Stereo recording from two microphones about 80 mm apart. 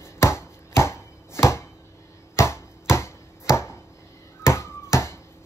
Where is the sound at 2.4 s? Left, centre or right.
Left.